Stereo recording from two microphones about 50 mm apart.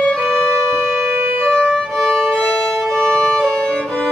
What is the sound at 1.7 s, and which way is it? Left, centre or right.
Violin, centre.